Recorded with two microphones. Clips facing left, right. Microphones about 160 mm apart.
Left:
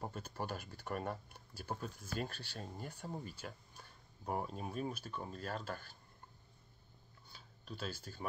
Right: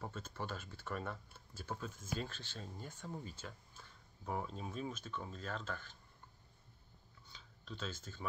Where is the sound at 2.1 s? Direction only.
15° right (ahead or behind).